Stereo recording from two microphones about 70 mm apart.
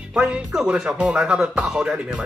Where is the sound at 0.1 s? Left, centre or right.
Centre.